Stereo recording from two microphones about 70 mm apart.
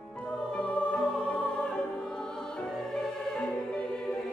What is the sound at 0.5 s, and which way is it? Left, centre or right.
Music, centre.